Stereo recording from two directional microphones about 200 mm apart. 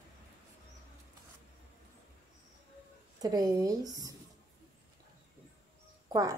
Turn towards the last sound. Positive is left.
turn(degrees=-15)  # may be behind; listen again after turning